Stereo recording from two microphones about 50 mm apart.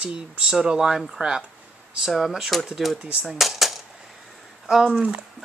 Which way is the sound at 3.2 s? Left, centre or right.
Centre.